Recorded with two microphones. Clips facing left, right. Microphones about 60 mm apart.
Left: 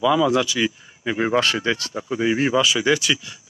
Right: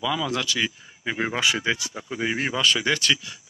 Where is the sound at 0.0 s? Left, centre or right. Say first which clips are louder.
Left 8 dB; centre.